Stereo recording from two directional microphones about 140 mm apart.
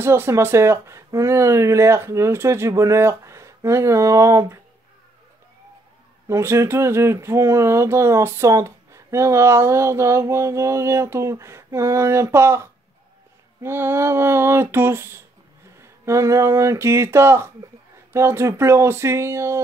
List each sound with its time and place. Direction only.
0.0 s speech: 15° right (ahead or behind)
6.2 s speech: 20° right (ahead or behind)